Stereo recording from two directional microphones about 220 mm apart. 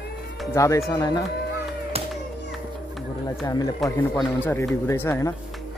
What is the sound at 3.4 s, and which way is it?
A man's voice, 15° left (ahead or behind).